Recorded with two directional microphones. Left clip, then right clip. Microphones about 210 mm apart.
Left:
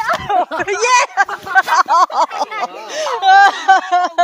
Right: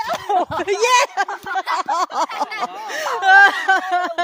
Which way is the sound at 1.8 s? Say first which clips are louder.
Left 8 dB; 20° right (ahead or behind).